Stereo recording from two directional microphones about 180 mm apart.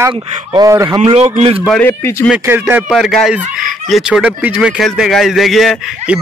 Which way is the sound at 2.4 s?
10° right (ahead or behind).